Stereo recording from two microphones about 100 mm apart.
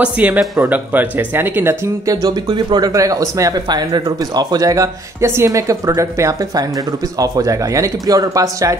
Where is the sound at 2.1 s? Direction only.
40° right (ahead or behind).